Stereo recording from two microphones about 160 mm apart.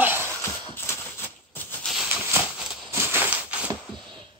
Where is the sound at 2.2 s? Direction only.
10° right (ahead or behind).